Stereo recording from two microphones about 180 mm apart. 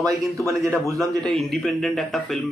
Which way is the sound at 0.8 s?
Centre (ahead or behind).